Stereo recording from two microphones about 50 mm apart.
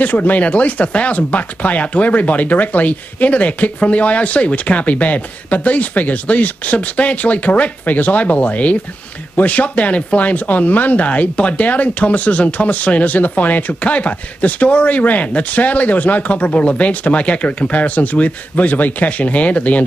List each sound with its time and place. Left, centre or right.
0.0 s speech: left